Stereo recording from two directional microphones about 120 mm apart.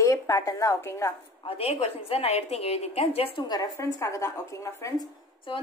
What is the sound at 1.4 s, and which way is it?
A woman's voice, 55° left (ahead or behind).